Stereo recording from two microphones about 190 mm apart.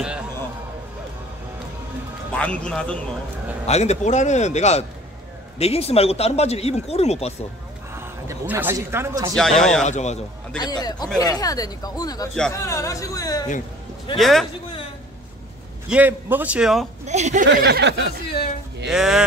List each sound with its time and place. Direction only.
2.3 s a man's voice: 5° left (ahead or behind)
3.6 s speech: 35° left (ahead or behind)
7.9 s speech: 15° right (ahead or behind)
9.3 s a man's voice: centre (ahead or behind)
9.8 s speech: 35° left (ahead or behind)
10.6 s speech: 20° left (ahead or behind)
14.1 s a man's voice: centre (ahead or behind)
15.9 s a man's voice: 10° right (ahead or behind)
17.0 s speech: 35° right (ahead or behind)
17.5 s a sound: 60° right (ahead or behind)
18.3 s a sound: 55° left (ahead or behind)
18.9 s a man's voice: 5° right (ahead or behind)